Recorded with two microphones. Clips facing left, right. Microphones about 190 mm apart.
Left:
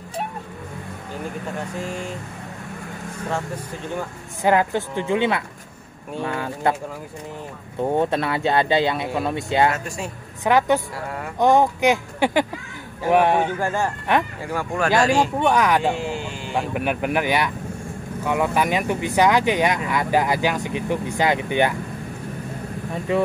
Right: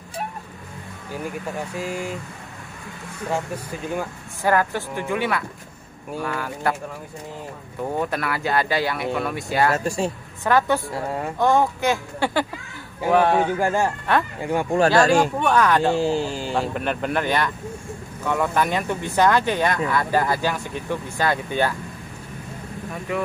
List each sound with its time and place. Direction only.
1.8 s speech: 5° right (ahead or behind)
4.4 s speech: 20° left (ahead or behind)
7.8 s speech: 25° left (ahead or behind)
9.8 s speech: 30° right (ahead or behind)
10.4 s speech: 15° left (ahead or behind)
10.9 s speech: 25° right (ahead or behind)
11.3 s speech: 20° left (ahead or behind)
13.6 s speech: 15° right (ahead or behind)
14.1 s speech: 15° left (ahead or behind)
14.4 s speech: 20° right (ahead or behind)
15.0 s speech: 45° right (ahead or behind)
15.3 s speech: 15° left (ahead or behind)
15.9 s speech: 30° right (ahead or behind)
16.5 s speech: 10° left (ahead or behind)